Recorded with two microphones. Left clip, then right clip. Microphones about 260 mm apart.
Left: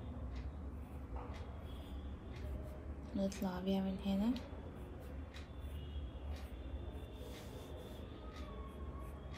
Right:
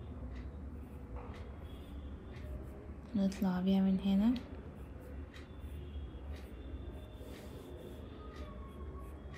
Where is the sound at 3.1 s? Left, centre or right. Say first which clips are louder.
Right 4 dB; right.